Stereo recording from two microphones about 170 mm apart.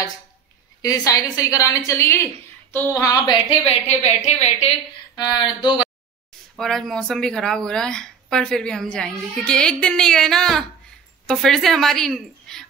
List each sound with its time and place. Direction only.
0.8 s a woman's voice: 20° left (ahead or behind)
3.4 s a woman's voice: 40° left (ahead or behind)
5.1 s a woman's voice: 25° left (ahead or behind)
6.5 s speech: centre (ahead or behind)